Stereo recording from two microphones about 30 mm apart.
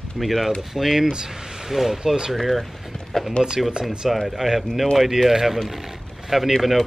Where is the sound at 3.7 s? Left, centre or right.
Right.